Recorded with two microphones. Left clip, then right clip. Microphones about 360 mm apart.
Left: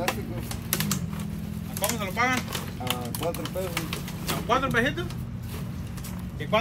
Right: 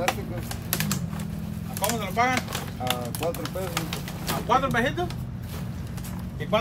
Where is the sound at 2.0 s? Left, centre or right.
Right.